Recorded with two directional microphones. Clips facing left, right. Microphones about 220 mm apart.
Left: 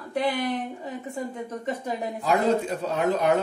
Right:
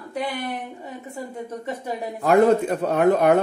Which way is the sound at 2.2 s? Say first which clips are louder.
Right 7 dB; 55° right (ahead or behind).